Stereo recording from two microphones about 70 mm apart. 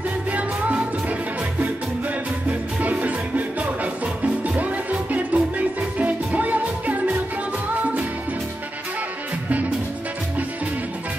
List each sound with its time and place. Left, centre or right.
0.3 s music: right
2.8 s music: right